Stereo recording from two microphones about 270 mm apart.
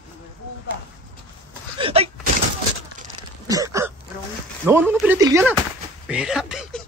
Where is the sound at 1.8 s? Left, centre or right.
Right.